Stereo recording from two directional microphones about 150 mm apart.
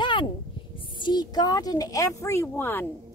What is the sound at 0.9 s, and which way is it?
A woman's voice, 30° left (ahead or behind).